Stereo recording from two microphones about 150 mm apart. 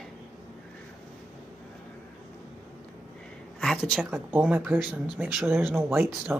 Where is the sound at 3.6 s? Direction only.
5° left (ahead or behind).